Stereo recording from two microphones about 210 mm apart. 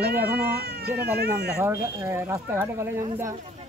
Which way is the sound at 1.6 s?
15° right (ahead or behind).